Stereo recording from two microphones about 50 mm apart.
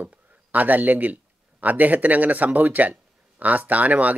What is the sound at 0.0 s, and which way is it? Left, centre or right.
A man's voice, right.